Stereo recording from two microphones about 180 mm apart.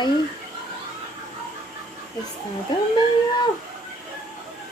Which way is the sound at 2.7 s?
25° left (ahead or behind).